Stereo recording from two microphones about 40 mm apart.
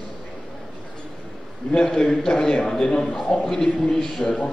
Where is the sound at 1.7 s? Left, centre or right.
Left.